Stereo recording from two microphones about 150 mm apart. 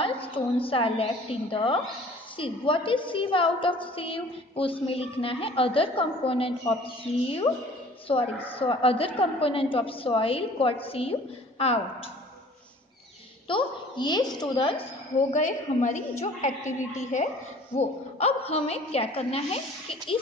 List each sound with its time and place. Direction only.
0.0 s a woman's voice: 35° left (ahead or behind)
8.5 s a woman's voice: 40° left (ahead or behind)
13.5 s a woman's voice: 30° left (ahead or behind)
15.3 s a woman's voice: 55° left (ahead or behind)